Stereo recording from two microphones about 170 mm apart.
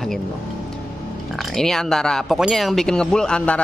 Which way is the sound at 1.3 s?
Centre (ahead or behind).